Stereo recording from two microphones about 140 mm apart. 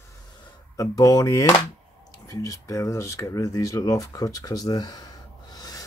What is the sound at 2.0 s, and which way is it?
Speech, 25° left (ahead or behind).